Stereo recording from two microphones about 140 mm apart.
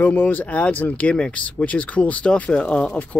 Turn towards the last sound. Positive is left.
turn(degrees=5)  # may be behind; listen again after turning